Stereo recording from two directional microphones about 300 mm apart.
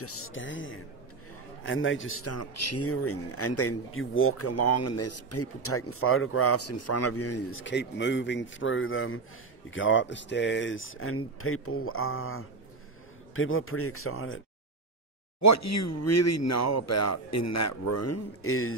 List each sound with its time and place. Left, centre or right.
0.0 s speech: left
15.4 s speech: left